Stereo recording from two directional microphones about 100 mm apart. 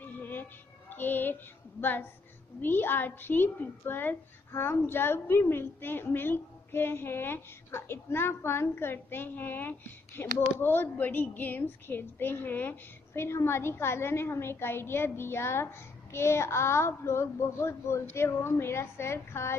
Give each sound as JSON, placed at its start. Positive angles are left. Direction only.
{"t": 0.0, "sound": "child singing", "side_deg": 20}
{"t": 2.6, "sound": "a woman's voice", "side_deg": 20}